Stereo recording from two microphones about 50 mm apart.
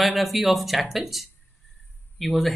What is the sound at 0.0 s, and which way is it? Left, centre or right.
Speech, centre.